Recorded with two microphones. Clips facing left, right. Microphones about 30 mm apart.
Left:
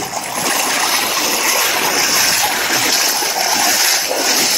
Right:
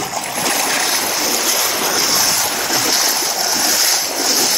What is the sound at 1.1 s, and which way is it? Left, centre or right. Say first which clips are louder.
Stream: left 2 dB; centre.